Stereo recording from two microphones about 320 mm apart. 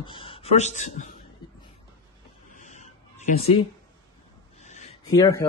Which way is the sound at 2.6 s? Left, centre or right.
Left.